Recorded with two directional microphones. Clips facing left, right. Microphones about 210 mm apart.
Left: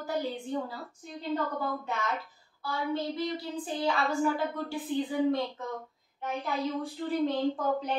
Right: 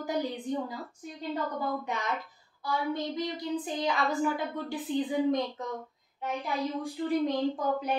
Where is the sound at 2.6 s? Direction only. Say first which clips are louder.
Even; 15° right (ahead or behind).